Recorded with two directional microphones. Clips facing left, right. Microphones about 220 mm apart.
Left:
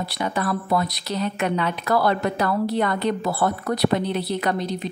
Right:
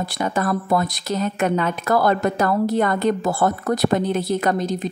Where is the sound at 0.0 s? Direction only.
50° right (ahead or behind).